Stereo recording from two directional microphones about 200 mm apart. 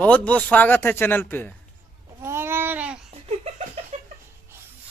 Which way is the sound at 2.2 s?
10° right (ahead or behind).